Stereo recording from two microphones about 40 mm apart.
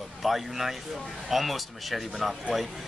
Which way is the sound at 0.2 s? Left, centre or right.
Centre.